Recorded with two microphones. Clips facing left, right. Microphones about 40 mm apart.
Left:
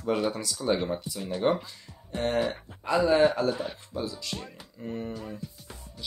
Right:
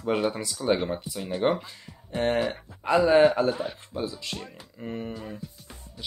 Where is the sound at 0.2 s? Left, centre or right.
Right.